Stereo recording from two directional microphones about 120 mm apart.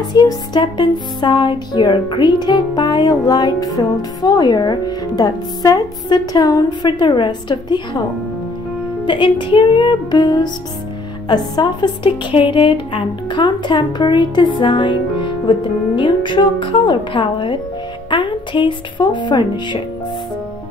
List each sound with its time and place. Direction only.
0.0 s music: 35° left (ahead or behind)
9.0 s music: 40° left (ahead or behind)
16.0 s speech: 40° left (ahead or behind)
18.1 s music: 40° left (ahead or behind)